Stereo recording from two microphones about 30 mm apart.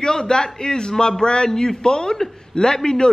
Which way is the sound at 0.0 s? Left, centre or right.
Left.